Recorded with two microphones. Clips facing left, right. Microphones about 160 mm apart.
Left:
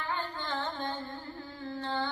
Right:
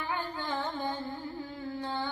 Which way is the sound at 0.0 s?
10° right (ahead or behind).